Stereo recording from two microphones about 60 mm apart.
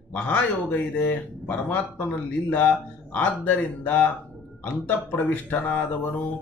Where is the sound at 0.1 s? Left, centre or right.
Left.